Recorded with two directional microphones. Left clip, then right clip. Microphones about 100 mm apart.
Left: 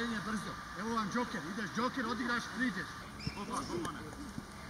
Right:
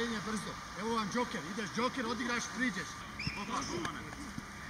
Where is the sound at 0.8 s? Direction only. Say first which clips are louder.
Right 2 dB; 20° right (ahead or behind).